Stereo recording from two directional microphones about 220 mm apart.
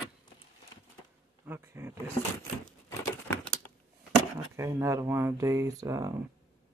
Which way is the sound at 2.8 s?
15° left (ahead or behind).